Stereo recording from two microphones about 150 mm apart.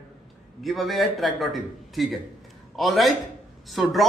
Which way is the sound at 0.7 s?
Centre (ahead or behind).